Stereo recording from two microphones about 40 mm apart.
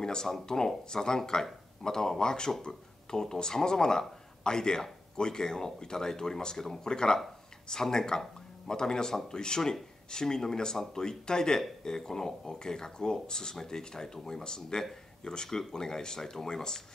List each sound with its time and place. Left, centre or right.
0.0 s speech: centre